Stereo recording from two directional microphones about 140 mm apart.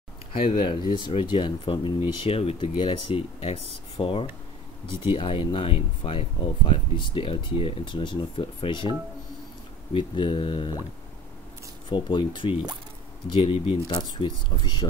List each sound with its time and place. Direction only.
0.3 s speech: 40° left (ahead or behind)
9.9 s speech: 35° left (ahead or behind)
11.9 s speech: 35° left (ahead or behind)
13.9 s speech: 30° left (ahead or behind)